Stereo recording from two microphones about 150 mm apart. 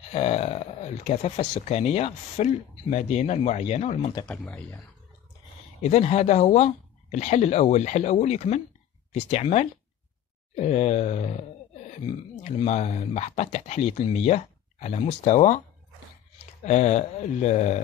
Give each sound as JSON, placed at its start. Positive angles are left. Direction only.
{"t": 0.1, "sound": "speech", "side_deg": 45}
{"t": 4.3, "sound": "speech", "side_deg": 10}
{"t": 5.8, "sound": "speech", "side_deg": 45}
{"t": 12.4, "sound": "speech", "side_deg": 45}
{"t": 16.6, "sound": "speech", "side_deg": 50}